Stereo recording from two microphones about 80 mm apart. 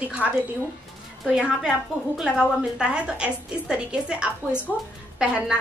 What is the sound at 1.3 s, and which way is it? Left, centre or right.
A woman's voice, centre.